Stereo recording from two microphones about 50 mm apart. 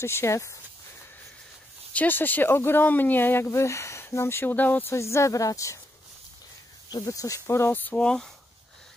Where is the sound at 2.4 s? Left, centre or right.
Left.